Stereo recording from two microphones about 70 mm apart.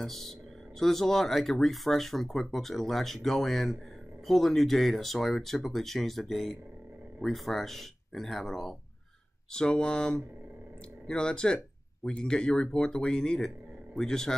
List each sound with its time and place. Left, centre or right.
0.0 s speech: centre